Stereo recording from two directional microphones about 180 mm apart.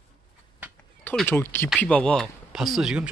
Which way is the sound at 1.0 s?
10° left (ahead or behind).